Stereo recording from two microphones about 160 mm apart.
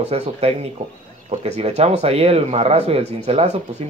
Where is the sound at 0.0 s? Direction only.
40° right (ahead or behind).